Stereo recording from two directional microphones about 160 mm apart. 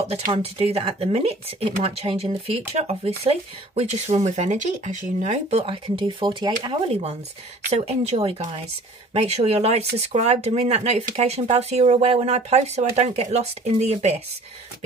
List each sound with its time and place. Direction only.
0.3 s speech: 40° right (ahead or behind)